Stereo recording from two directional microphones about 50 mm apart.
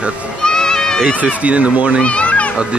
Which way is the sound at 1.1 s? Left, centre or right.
Right.